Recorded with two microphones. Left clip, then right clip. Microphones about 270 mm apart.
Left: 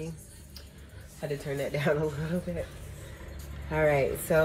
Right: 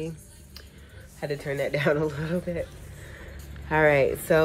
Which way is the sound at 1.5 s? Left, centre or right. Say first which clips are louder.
Right 4 dB; centre.